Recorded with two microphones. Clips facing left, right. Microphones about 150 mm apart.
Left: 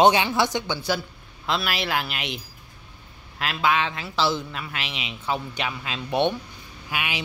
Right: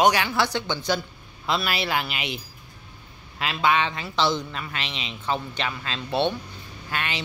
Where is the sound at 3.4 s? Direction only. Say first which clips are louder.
Right 1 dB; centre (ahead or behind).